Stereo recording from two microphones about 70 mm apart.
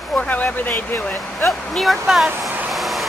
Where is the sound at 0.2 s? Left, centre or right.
Left.